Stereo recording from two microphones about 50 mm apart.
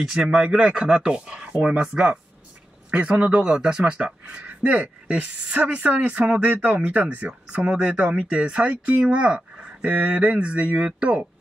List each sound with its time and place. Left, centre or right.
0.0 s speech: centre
6.5 s speech: right